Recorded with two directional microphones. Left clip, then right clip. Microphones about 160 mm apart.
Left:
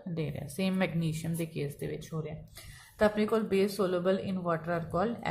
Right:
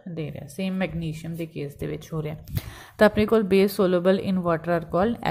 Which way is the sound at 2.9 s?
45° right (ahead or behind).